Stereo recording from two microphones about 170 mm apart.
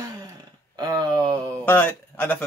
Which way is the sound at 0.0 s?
20° right (ahead or behind).